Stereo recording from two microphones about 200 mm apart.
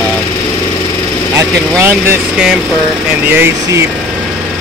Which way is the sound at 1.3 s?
15° right (ahead or behind).